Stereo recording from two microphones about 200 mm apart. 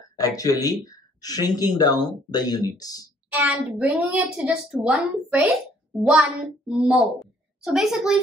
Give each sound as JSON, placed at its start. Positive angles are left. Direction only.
{"t": 0.2, "sound": "speech", "side_deg": 20}
{"t": 3.3, "sound": "a woman's voice", "side_deg": -5}